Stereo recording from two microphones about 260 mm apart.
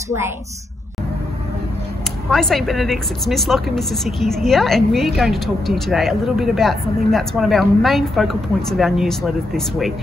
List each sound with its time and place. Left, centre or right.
2.3 s a woman's voice: centre